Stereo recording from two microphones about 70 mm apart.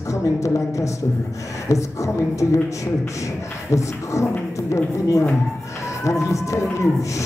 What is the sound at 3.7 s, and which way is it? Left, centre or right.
Speech, left.